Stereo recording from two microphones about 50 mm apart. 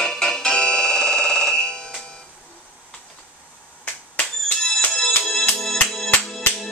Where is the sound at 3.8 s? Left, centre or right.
Left.